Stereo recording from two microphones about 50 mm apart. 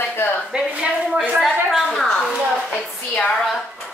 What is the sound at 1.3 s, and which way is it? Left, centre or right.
Speech, centre.